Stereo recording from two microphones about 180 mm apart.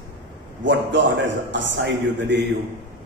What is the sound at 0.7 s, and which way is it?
A man's voice, 90° right.